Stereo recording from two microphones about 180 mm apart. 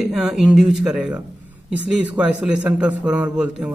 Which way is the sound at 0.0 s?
Centre (ahead or behind).